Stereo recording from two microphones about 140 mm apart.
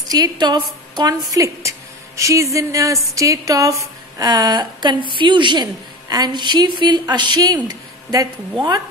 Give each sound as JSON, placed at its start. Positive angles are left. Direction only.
{"t": 0.1, "sound": "a woman's voice", "side_deg": -30}